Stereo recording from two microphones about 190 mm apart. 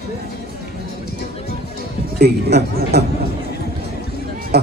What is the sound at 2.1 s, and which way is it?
Speech, 60° right (ahead or behind).